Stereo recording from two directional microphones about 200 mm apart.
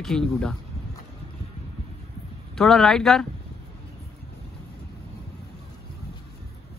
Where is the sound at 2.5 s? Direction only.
Centre (ahead or behind).